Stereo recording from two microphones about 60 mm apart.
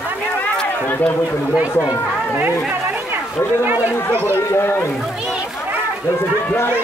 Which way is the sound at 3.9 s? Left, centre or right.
Left.